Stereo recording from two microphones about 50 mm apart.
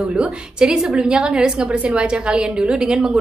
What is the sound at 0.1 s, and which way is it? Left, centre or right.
A woman's voice, centre.